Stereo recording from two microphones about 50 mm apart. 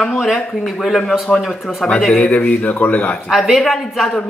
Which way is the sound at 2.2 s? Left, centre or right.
Left.